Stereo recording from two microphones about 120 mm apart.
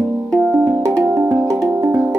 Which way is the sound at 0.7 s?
25° right (ahead or behind).